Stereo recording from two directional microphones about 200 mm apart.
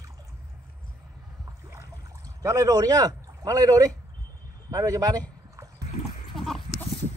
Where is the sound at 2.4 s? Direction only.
15° right (ahead or behind).